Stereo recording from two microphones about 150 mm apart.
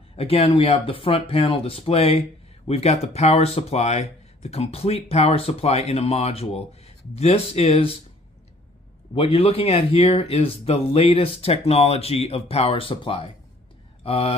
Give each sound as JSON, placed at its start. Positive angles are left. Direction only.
{"t": 0.1, "sound": "speech", "side_deg": 40}
{"t": 9.1, "sound": "speech", "side_deg": 40}